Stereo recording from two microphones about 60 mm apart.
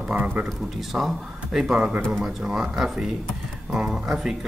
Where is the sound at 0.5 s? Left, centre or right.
Centre.